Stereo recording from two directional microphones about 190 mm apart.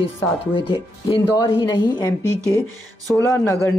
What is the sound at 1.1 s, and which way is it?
A man's voice, 25° left (ahead or behind).